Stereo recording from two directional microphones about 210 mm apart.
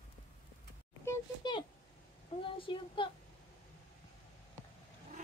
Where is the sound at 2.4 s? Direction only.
25° left (ahead or behind).